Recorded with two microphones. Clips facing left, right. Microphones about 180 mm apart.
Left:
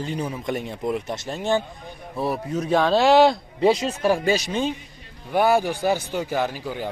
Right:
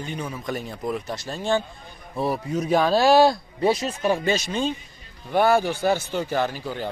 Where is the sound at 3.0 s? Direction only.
20° left (ahead or behind).